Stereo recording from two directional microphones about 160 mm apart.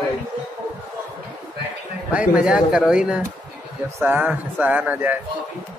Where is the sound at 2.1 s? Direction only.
5° right (ahead or behind).